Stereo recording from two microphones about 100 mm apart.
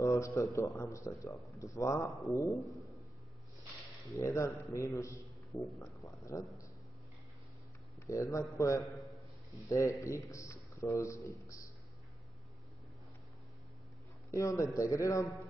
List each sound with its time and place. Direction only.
0.0 s a man's voice: 30° left (ahead or behind)
4.1 s a man's voice: 30° left (ahead or behind)
5.5 s speech: centre (ahead or behind)
6.0 s a man's voice: 30° left (ahead or behind)
8.1 s a man's voice: 30° left (ahead or behind)
14.3 s a man's voice: 30° left (ahead or behind)